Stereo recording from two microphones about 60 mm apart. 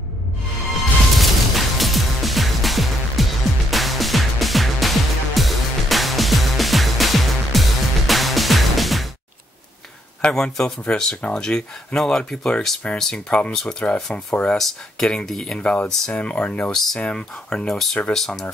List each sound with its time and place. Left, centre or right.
0.7 s music: centre
10.2 s speech: centre
13.3 s speech: left
14.6 s speech: centre
16.1 s speech: left; by 18.4 s centre